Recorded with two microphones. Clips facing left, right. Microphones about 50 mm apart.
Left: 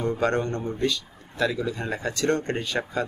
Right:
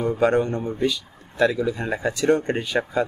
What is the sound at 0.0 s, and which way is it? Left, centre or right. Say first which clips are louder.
Speech: right 4 dB; centre.